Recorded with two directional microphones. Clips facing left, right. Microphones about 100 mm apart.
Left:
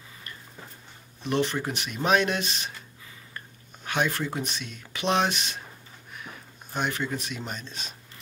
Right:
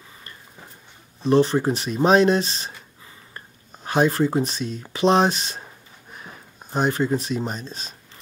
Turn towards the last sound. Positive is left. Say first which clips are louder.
# right 5 dB
turn(degrees=-35)  # may be behind; listen again after turning